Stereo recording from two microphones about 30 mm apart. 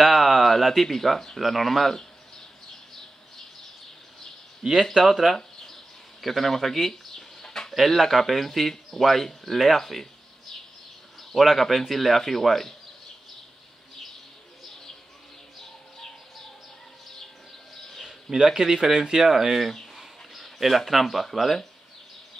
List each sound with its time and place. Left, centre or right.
0.0 s a sound: centre
1.4 s speech: centre
5.0 s speech: centre
5.3 s bird: centre
7.7 s speech: centre
11.3 s speech: centre
18.3 s speech: centre
18.7 s speech: centre